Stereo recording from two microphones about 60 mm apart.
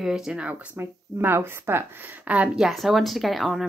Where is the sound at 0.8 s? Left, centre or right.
Right.